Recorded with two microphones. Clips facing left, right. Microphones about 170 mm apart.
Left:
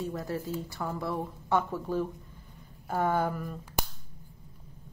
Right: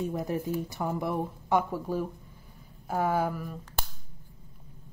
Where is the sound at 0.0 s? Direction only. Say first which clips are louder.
Right 3 dB; 20° right (ahead or behind).